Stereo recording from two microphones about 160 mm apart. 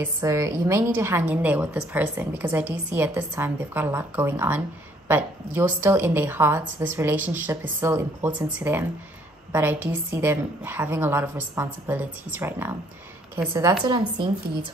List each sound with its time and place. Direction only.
0.0 s a woman's voice: 20° right (ahead or behind)